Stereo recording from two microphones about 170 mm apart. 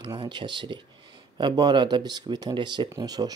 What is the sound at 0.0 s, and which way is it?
Speech, 25° right (ahead or behind).